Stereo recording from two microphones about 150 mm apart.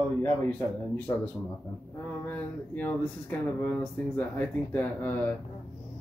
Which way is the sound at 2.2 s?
10° left (ahead or behind).